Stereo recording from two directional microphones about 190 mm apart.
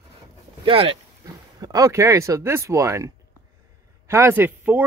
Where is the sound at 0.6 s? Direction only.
30° right (ahead or behind).